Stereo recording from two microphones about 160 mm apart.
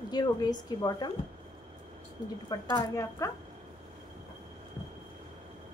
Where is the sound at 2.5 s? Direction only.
20° left (ahead or behind).